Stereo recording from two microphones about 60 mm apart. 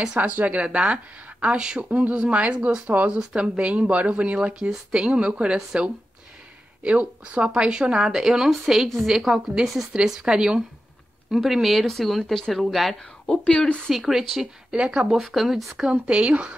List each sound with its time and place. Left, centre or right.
0.0 s a woman's voice: centre
6.8 s speech: right; by 15.9 s centre
15.9 s a woman's voice: centre